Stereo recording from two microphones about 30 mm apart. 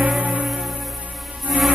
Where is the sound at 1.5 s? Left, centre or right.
Centre.